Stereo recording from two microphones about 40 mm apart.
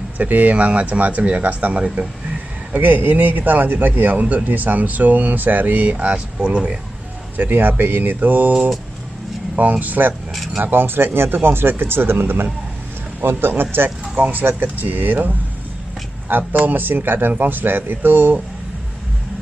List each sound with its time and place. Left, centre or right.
0.2 s speech: right
2.7 s a man's voice: right
5.9 s speech: right
7.3 s a man's voice: right
9.6 s a man's voice: right
10.3 s speech: centre
10.6 s speech: right
13.8 s a man's voice: right
16.5 s a man's voice: right